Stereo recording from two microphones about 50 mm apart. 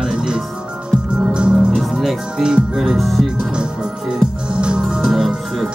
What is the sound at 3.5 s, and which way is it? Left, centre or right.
Music, centre.